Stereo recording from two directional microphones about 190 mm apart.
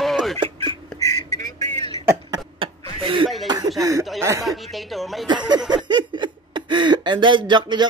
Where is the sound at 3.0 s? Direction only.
25° right (ahead or behind).